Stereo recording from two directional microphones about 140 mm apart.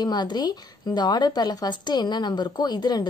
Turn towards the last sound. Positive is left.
turn(degrees=30)  # may be behind; listen again after turning